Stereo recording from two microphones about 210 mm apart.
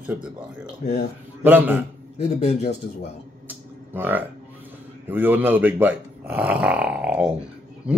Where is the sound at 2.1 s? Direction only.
30° left (ahead or behind).